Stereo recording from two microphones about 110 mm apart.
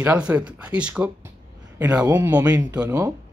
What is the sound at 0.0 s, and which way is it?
Speech, 15° right (ahead or behind).